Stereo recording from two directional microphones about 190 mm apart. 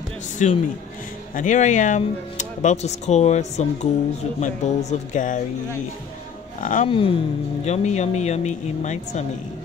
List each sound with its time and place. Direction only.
0.4 s speech: 40° left (ahead or behind)
6.6 s speech: 45° left (ahead or behind)
6.9 s speech: 30° left (ahead or behind)